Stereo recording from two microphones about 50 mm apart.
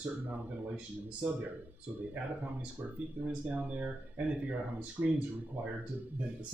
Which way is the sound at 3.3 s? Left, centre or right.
Right.